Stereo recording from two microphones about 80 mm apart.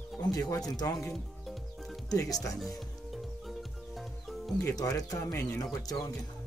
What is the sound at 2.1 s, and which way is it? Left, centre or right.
Speech, left.